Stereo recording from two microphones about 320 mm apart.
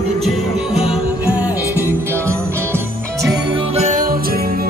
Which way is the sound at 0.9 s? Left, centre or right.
Centre.